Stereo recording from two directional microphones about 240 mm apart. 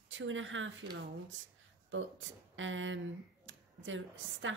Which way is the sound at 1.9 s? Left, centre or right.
Right.